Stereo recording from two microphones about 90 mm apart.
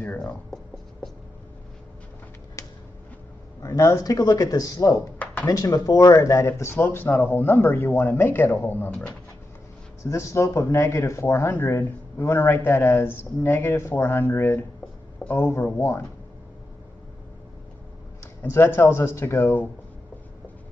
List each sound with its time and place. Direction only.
0.2 s speech: 5° left (ahead or behind)
2.6 s a sound: 35° left (ahead or behind)
3.6 s speech: 35° left (ahead or behind)
5.2 s a sound: 20° left (ahead or behind)
5.5 s speech: 40° left (ahead or behind); by 9.0 s 25° left (ahead or behind)
10.0 s speech: 30° left (ahead or behind)
18.5 s speech: 30° left (ahead or behind)